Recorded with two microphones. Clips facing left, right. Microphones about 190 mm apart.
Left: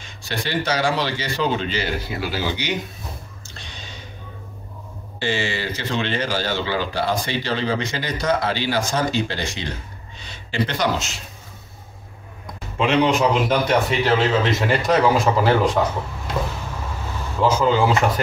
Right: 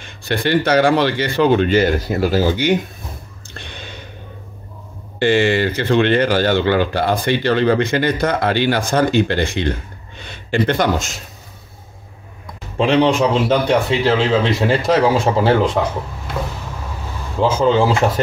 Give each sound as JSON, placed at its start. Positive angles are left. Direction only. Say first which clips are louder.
{"t": 0.0, "sound": "speech", "louder": "right 8 dB", "side_deg": -60}
{"t": 3.5, "sound": "a sound", "louder": "right 6 dB", "side_deg": -60}
{"t": 5.2, "sound": "speech", "louder": "right 10 dB", "side_deg": -60}
{"t": 12.7, "sound": "a man's voice", "louder": "right 4 dB", "side_deg": -35}
{"t": 17.4, "sound": "speech", "louder": "right 3 dB", "side_deg": -30}